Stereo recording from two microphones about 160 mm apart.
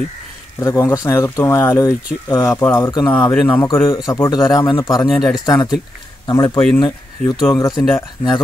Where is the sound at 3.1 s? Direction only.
10° left (ahead or behind).